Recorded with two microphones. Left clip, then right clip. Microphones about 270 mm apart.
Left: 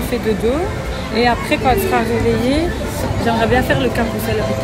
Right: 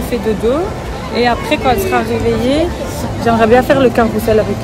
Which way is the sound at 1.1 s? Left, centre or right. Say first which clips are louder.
Right 2 dB; centre.